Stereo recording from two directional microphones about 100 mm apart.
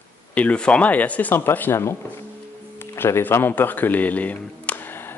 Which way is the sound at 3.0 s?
25° left (ahead or behind).